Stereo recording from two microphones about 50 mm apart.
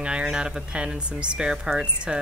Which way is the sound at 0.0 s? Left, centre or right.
Centre.